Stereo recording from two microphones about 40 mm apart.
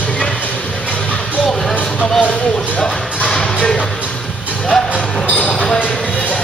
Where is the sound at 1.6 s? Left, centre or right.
Centre.